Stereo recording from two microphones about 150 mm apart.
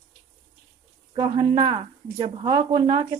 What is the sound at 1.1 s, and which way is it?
Speech, 30° right (ahead or behind).